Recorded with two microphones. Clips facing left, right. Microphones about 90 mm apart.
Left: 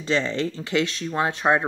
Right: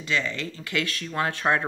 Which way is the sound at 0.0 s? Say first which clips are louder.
Left 5 dB; 30° left (ahead or behind).